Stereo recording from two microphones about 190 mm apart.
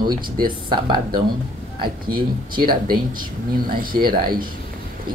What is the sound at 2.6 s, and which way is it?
Speech, 50° right (ahead or behind).